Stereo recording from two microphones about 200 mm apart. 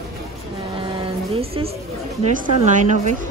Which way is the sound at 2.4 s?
35° right (ahead or behind).